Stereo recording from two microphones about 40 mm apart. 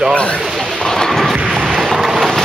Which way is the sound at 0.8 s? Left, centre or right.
Centre.